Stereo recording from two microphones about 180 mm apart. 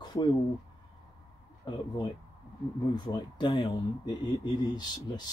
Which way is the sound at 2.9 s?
25° left (ahead or behind).